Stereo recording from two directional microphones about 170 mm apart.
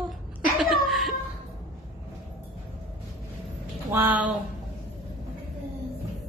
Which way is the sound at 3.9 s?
10° right (ahead or behind).